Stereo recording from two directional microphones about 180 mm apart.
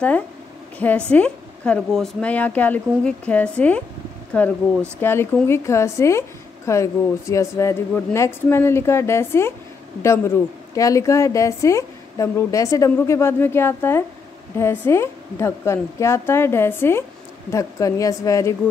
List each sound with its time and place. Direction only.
0.7 s a woman's voice: 10° left (ahead or behind)